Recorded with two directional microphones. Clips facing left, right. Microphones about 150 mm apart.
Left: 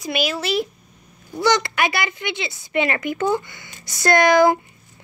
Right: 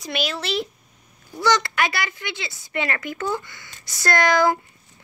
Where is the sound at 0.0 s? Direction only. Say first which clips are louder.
Left 4 dB; 10° left (ahead or behind).